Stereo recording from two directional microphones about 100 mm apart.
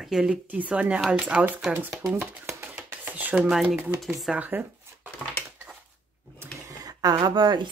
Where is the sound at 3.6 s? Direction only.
10° right (ahead or behind).